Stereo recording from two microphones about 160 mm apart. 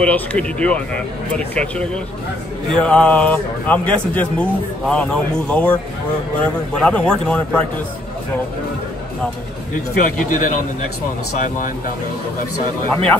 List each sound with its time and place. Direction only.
0.0 s a man's voice: 10° left (ahead or behind)
9.9 s speech: 55° left (ahead or behind)